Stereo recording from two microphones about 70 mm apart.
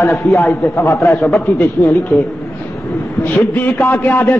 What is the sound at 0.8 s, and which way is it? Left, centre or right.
Speech, left.